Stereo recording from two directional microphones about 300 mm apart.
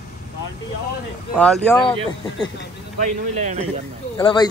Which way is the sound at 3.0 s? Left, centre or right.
Right.